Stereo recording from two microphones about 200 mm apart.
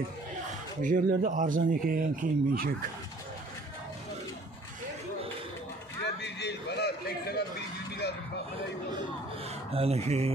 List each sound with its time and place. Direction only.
0.8 s speech: 40° right (ahead or behind)
6.2 s a sound: 55° left (ahead or behind)
9.7 s speech: 30° right (ahead or behind)